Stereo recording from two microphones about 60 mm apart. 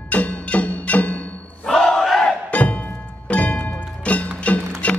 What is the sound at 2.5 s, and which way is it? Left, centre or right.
Music, left.